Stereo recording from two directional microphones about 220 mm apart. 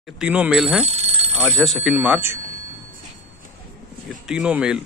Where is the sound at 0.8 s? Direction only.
30° right (ahead or behind).